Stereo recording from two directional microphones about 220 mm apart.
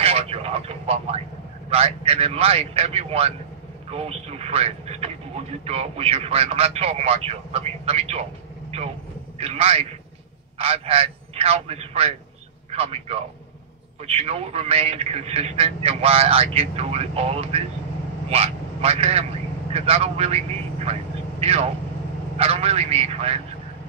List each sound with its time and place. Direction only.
0.0 s vehicle: 25° right (ahead or behind)
1.7 s a man's voice: 25° right (ahead or behind)